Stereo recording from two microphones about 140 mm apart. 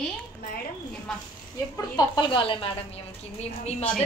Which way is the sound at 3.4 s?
50° left (ahead or behind).